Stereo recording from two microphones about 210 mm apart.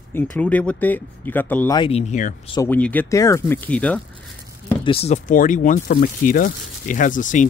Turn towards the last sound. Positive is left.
turn(degrees=35)  # may be behind; listen again after turning